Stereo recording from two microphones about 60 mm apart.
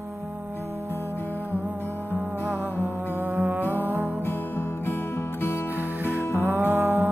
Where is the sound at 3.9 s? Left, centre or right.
Right.